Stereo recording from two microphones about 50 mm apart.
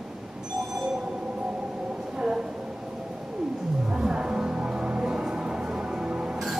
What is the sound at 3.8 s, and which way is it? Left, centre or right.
Music, centre.